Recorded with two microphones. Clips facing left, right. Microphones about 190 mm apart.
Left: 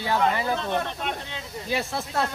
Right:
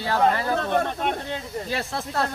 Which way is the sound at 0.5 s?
50° right (ahead or behind).